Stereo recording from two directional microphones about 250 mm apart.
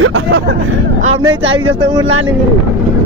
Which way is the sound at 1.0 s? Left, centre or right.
Right.